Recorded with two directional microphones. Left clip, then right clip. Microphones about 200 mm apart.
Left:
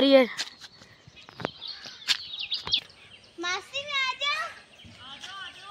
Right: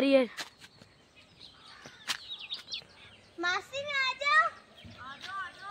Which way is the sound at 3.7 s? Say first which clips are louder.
Left 3 dB; 15° right (ahead or behind).